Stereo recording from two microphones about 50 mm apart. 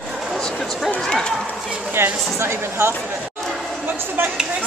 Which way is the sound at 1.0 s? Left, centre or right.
Centre.